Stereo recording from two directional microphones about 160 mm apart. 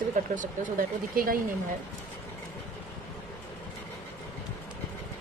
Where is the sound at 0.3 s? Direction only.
55° right (ahead or behind).